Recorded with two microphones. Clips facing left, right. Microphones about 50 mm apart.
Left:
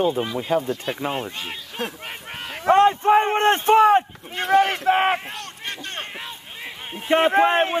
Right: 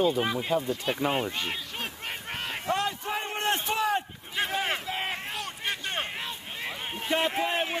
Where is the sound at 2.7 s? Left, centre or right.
Left.